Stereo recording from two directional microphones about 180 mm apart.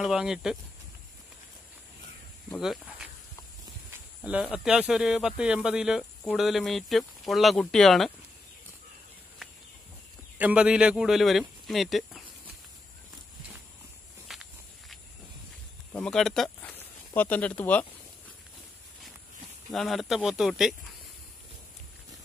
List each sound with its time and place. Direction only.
0.0 s speech: 5° right (ahead or behind)
2.5 s speech: centre (ahead or behind)
4.2 s speech: 5° right (ahead or behind)
10.3 s speech: 10° right (ahead or behind)
14.2 s walk: centre (ahead or behind)
15.9 s speech: 5° left (ahead or behind)
19.7 s speech: centre (ahead or behind)